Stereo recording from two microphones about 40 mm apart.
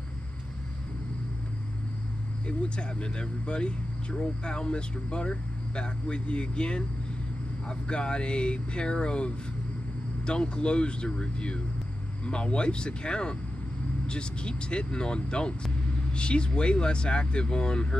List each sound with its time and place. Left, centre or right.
2.4 s speech: left